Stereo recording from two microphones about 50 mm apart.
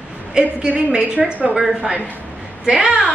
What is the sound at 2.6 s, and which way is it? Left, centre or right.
Speech, right.